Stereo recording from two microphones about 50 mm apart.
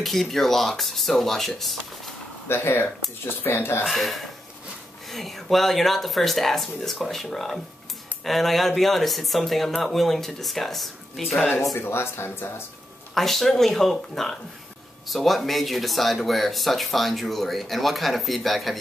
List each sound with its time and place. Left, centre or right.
0.0 s speech: centre
2.4 s speech: left
3.8 s speech: centre
11.8 s speech: left
13.1 s speech: centre